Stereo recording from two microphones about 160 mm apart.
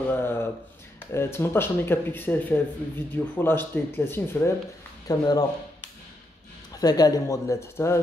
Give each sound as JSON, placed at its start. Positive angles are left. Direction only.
{"t": 0.1, "sound": "a sound", "side_deg": 15}
{"t": 1.1, "sound": "speech", "side_deg": 15}
{"t": 6.8, "sound": "speech", "side_deg": 25}